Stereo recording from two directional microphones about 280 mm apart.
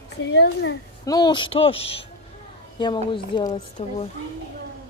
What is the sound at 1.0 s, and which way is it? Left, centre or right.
Speech, centre.